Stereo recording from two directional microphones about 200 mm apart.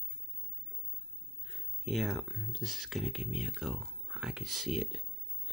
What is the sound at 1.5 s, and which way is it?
Speech, centre (ahead or behind).